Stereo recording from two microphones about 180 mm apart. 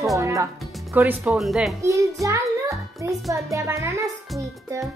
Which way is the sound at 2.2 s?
15° right (ahead or behind).